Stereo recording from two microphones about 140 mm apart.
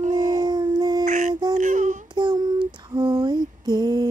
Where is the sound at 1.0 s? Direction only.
65° right (ahead or behind).